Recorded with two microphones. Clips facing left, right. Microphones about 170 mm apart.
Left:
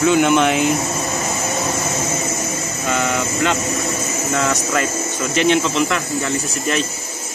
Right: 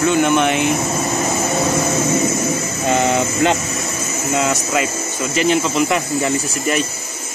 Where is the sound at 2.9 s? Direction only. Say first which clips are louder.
Right 4 dB; 25° right (ahead or behind).